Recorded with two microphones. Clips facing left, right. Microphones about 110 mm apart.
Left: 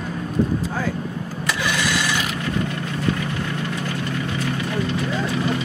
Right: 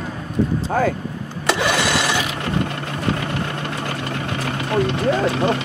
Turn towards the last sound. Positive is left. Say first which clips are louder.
# right 5 dB
turn(degrees=-60)  # may be behind; listen again after turning